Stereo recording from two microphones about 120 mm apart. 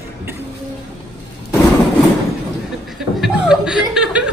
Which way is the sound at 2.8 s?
5° right (ahead or behind).